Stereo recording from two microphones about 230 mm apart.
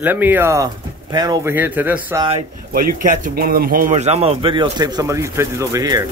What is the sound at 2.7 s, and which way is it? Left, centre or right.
A man's voice, right.